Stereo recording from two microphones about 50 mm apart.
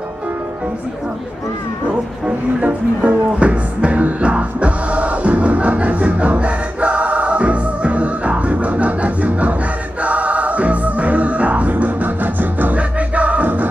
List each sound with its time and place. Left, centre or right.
1.9 s speech: right
10.0 s music: right